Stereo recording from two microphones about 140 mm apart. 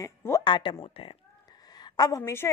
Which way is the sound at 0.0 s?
20° left (ahead or behind).